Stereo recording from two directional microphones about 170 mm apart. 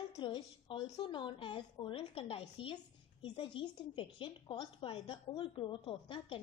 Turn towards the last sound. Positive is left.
turn(degrees=30)  # may be behind; listen again after turning